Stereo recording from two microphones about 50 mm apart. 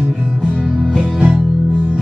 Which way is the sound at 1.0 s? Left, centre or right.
Right.